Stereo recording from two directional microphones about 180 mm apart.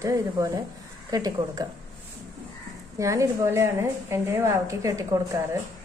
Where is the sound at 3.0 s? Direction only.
15° right (ahead or behind).